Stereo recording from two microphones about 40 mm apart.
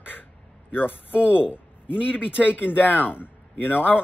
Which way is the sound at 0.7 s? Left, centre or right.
Left.